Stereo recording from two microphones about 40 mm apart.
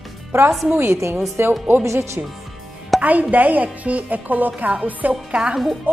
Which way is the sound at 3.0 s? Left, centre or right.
Right.